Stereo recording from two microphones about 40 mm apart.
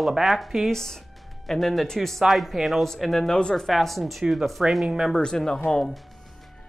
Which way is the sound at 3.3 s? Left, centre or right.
Left.